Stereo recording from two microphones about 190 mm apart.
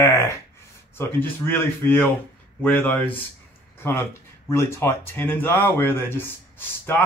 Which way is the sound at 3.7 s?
10° left (ahead or behind).